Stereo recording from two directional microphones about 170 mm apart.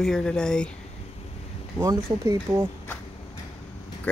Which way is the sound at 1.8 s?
20° right (ahead or behind).